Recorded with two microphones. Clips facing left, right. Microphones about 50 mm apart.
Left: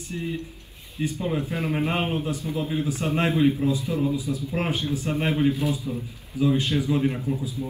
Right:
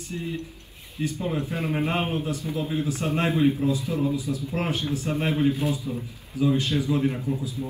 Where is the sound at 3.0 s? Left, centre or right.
Left.